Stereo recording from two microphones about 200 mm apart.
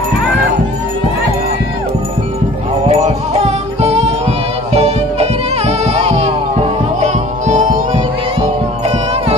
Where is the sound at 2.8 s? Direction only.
35° right (ahead or behind).